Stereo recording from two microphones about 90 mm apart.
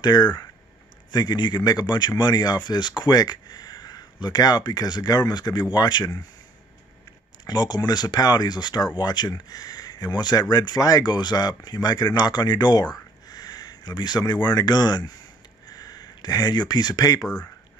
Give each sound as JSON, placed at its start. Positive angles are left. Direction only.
{"t": 0.0, "sound": "speech", "side_deg": 50}
{"t": 7.4, "sound": "speech", "side_deg": 50}